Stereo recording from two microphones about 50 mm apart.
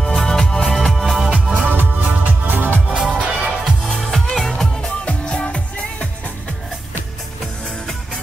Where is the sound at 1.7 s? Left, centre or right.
Right.